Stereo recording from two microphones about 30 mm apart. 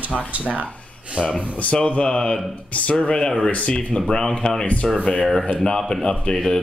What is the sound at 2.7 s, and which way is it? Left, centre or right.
Speech, left.